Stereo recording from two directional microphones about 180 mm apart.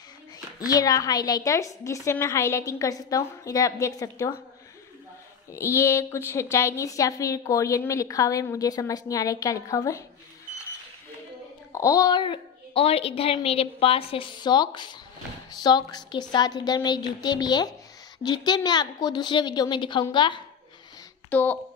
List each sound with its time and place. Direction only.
0.6 s a woman's voice: 20° left (ahead or behind)
5.5 s a woman's voice: 15° left (ahead or behind)
11.7 s a woman's voice: 20° left (ahead or behind)
21.3 s a woman's voice: 10° left (ahead or behind)